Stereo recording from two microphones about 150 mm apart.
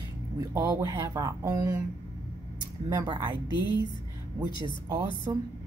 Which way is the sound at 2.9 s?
30° right (ahead or behind).